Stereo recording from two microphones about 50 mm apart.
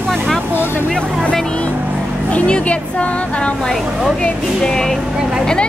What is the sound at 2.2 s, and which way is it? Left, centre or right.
Speech, left.